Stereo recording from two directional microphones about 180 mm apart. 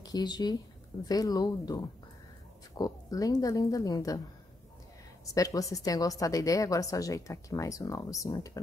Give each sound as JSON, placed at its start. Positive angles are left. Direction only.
{"t": 0.0, "sound": "a woman's voice", "side_deg": 20}
{"t": 5.3, "sound": "a woman's voice", "side_deg": 20}